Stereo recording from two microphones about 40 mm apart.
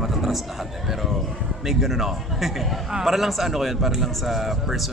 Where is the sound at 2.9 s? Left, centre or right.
Centre.